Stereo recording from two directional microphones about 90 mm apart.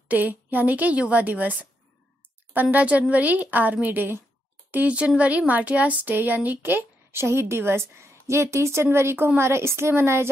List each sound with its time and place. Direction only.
0.1 s a woman's voice: 20° right (ahead or behind)